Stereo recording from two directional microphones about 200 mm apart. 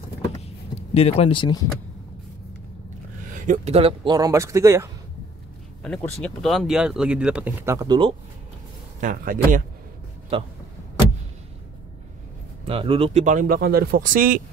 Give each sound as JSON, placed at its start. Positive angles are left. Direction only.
{"t": 0.7, "sound": "speech", "side_deg": 30}
{"t": 3.3, "sound": "speech", "side_deg": -40}
{"t": 5.8, "sound": "speech", "side_deg": 5}
{"t": 9.0, "sound": "speech", "side_deg": -45}
{"t": 12.6, "sound": "speech", "side_deg": -25}